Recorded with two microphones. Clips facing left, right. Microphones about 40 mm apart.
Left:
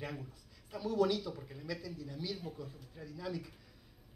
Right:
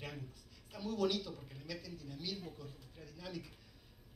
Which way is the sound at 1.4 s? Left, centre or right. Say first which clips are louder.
Left 5 dB; centre.